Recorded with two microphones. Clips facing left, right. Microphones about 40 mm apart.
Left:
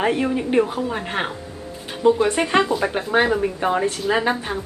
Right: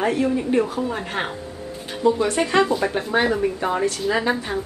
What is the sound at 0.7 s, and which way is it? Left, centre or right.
Speech, centre.